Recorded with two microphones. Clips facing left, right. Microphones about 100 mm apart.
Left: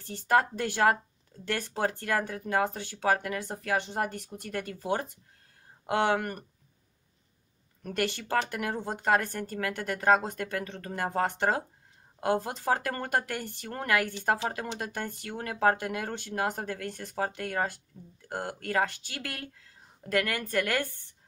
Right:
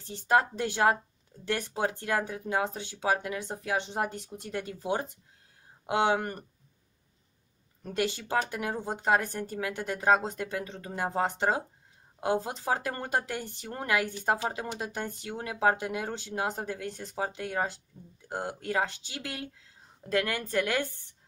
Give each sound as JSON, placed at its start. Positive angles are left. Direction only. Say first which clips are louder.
{"t": 0.0, "sound": "a woman's voice", "louder": "even", "side_deg": -20}
{"t": 7.8, "sound": "a woman's voice", "louder": "even", "side_deg": -15}